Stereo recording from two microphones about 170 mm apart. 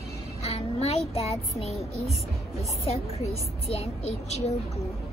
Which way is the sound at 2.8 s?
40° left (ahead or behind).